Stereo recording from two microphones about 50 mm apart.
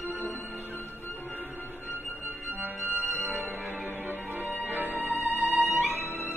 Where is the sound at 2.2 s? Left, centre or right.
Right.